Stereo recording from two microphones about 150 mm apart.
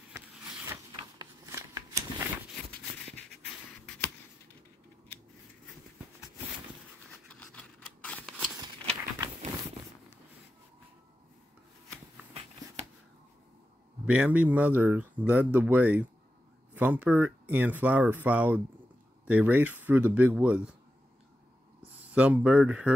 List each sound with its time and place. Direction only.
0.7 s a sound: 25° right (ahead or behind)
7.2 s scissors: 10° left (ahead or behind)
14.0 s speech: 10° right (ahead or behind)
22.1 s speech: 10° right (ahead or behind)